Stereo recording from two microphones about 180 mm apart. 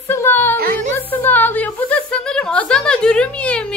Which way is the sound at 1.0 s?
10° left (ahead or behind).